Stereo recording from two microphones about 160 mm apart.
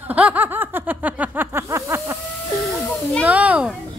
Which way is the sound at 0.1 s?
10° right (ahead or behind).